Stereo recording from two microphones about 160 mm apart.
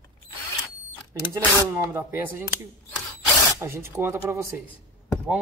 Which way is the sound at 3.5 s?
15° right (ahead or behind).